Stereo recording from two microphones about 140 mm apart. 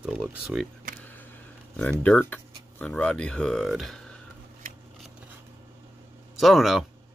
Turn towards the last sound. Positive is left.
turn(degrees=0)  # may be behind; listen again after turning